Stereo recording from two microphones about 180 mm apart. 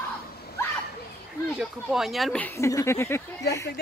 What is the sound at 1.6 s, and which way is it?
Speech, centre (ahead or behind).